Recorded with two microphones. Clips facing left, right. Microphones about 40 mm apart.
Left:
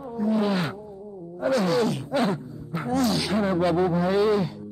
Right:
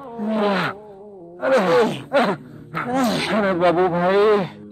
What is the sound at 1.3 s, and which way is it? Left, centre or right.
Wail, right.